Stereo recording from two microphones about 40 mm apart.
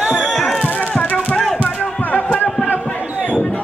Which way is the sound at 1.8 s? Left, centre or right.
Left.